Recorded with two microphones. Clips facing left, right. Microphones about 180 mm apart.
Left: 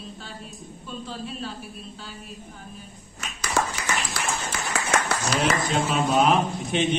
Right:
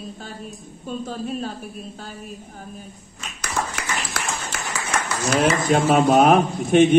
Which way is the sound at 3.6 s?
75° left (ahead or behind).